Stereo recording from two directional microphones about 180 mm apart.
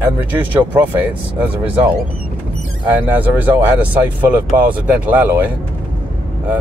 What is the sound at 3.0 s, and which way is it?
Speech, 10° right (ahead or behind).